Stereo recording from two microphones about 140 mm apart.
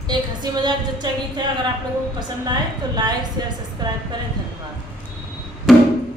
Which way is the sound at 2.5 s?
30° right (ahead or behind).